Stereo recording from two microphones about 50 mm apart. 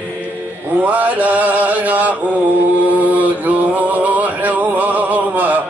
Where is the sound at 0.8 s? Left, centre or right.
Right.